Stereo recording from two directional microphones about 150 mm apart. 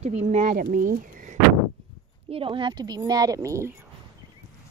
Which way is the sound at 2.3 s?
35° right (ahead or behind).